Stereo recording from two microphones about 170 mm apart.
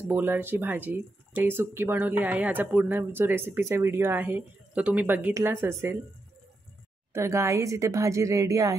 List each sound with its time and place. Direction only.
0.1 s speech: 10° right (ahead or behind)
7.1 s speech: 15° right (ahead or behind)